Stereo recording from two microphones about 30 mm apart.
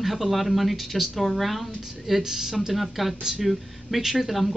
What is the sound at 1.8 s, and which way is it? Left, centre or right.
Speech, centre.